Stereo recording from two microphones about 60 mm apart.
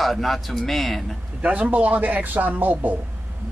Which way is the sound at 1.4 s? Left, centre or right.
Right.